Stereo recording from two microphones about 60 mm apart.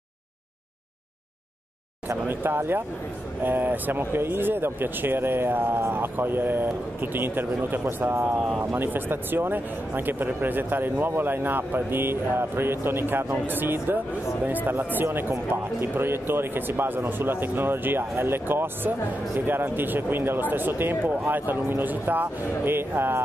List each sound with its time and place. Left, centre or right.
2.0 s speech: right
15.0 s speech: right